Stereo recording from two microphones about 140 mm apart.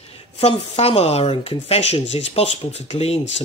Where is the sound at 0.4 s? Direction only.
45° left (ahead or behind).